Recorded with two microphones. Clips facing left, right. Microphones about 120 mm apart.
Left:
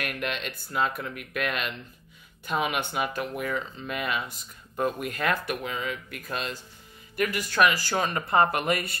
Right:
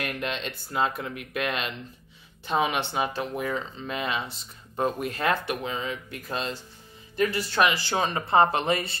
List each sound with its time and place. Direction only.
0.0 s speech: 30° right (ahead or behind)